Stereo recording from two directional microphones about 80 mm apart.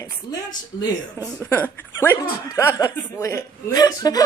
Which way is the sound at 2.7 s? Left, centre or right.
Left.